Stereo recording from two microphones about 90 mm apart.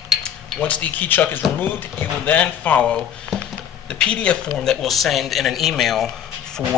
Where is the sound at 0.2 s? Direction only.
15° left (ahead or behind).